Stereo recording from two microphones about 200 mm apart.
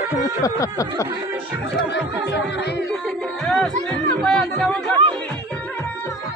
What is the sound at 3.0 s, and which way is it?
Music, centre (ahead or behind).